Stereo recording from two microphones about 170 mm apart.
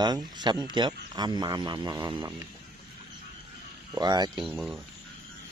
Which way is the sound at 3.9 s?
25° right (ahead or behind).